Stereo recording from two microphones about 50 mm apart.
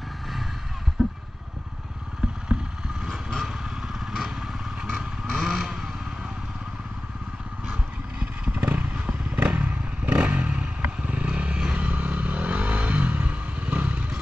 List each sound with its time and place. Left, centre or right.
1.0 s vehicle: centre
3.4 s motorcycle: centre
4.9 s vehicle: centre
7.6 s vehicle: right
9.3 s motorcycle: right
10.1 s vehicle: right
11.8 s motorcycle: right